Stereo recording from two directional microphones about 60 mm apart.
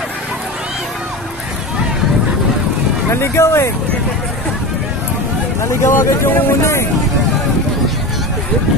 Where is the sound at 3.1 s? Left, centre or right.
Left.